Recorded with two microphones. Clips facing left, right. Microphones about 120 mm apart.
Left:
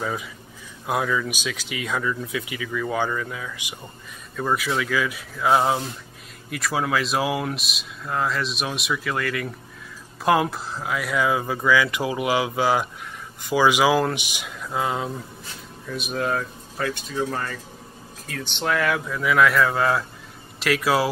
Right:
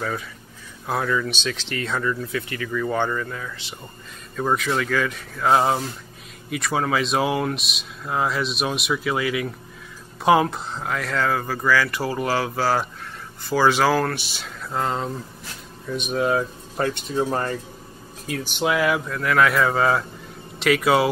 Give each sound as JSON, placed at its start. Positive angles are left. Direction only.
{"t": 0.8, "sound": "speech", "side_deg": 5}
{"t": 14.7, "sound": "speech", "side_deg": 5}
{"t": 16.8, "sound": "speech", "side_deg": -40}
{"t": 17.1, "sound": "speech", "side_deg": -30}
{"t": 18.4, "sound": "speech", "side_deg": -10}